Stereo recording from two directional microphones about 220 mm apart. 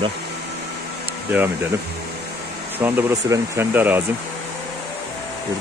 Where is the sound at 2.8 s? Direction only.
10° right (ahead or behind).